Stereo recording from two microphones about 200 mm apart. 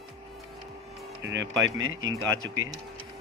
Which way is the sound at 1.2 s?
65° right (ahead or behind).